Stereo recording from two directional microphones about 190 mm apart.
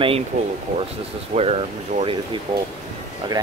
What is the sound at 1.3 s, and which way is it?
Speech, 35° right (ahead or behind).